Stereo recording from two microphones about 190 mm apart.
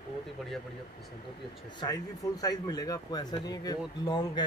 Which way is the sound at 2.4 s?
20° left (ahead or behind).